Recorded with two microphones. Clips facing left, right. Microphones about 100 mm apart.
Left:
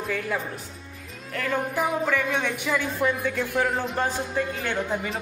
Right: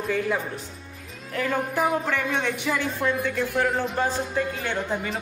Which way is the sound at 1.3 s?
5° right (ahead or behind).